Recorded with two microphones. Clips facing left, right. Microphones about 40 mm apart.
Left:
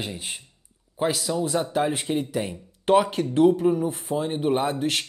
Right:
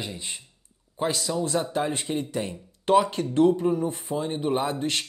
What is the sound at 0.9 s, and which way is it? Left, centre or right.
Speech, centre.